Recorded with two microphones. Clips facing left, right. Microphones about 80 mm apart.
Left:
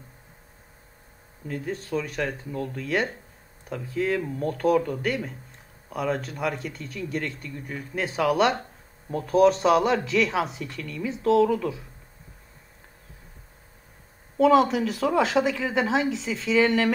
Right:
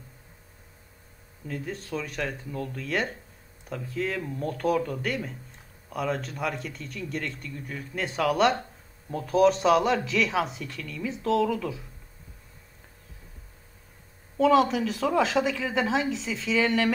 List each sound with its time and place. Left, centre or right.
1.5 s speech: centre
2.5 s speech: left
2.8 s speech: centre
14.3 s speech: centre